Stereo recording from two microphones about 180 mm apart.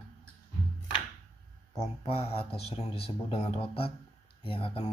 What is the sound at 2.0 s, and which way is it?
Speech, 30° left (ahead or behind).